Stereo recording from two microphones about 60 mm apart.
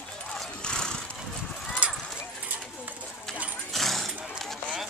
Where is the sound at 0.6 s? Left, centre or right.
Centre.